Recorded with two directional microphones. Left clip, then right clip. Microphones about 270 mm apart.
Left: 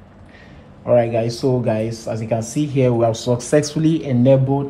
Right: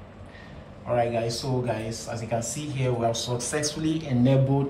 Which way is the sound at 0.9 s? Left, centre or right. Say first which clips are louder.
Left 9 dB; left.